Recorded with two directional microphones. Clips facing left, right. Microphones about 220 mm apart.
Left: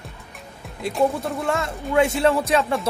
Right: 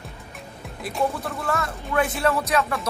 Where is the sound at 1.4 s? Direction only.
25° left (ahead or behind).